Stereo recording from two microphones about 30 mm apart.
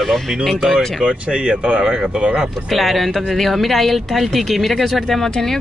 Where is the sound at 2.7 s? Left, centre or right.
Centre.